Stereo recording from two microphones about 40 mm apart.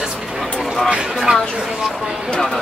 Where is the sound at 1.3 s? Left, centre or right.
Right.